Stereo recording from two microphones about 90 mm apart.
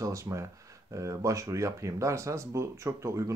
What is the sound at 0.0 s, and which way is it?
Speech, 35° right (ahead or behind).